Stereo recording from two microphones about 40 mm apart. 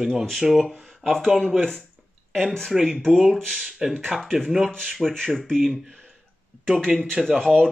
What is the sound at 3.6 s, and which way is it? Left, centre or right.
Speech, centre.